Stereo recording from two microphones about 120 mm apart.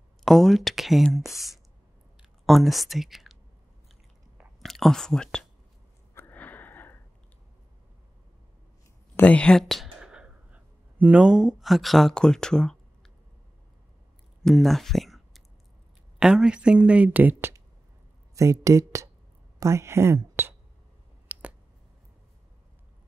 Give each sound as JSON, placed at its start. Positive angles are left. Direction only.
{"t": 0.2, "sound": "speech", "side_deg": 0}
{"t": 2.4, "sound": "speech", "side_deg": 0}
{"t": 4.6, "sound": "speech", "side_deg": 0}
{"t": 6.1, "sound": "wheeze", "side_deg": 15}
{"t": 9.1, "sound": "speech", "side_deg": 10}
{"t": 14.4, "sound": "a sound", "side_deg": 0}
{"t": 16.2, "sound": "speech", "side_deg": -5}
{"t": 21.3, "sound": "finger snapping", "side_deg": -10}